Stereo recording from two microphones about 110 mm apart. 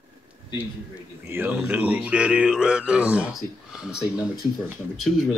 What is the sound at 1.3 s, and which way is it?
Speech, 20° right (ahead or behind).